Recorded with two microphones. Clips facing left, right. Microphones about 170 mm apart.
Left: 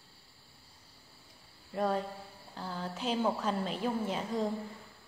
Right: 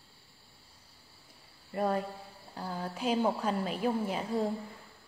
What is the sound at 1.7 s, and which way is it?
Cricket, 5° right (ahead or behind).